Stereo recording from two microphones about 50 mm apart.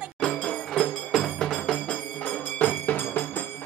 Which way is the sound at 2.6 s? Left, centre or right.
Left.